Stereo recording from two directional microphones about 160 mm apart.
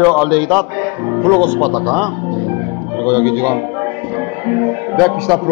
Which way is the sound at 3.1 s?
15° left (ahead or behind).